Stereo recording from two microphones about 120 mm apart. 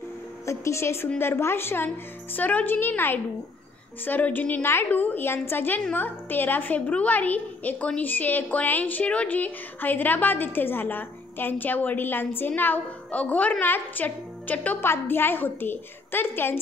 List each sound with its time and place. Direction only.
0.5 s a woman's voice: 25° left (ahead or behind)